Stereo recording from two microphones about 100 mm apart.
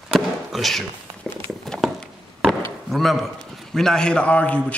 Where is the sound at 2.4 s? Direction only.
Centre (ahead or behind).